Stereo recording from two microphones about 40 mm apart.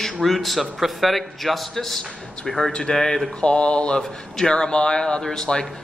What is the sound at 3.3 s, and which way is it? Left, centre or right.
Speech, left.